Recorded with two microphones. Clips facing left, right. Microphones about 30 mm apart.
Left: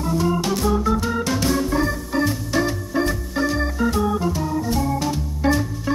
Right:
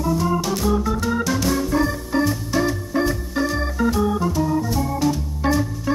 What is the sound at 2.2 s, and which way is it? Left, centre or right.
Organ, centre.